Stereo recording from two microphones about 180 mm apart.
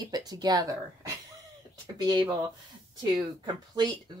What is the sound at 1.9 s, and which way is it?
Speech, 20° right (ahead or behind).